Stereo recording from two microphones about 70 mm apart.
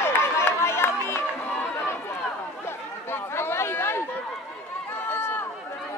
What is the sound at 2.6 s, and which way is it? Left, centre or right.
Chatter, left.